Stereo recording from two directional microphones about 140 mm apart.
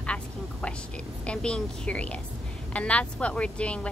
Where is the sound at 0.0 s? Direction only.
10° left (ahead or behind).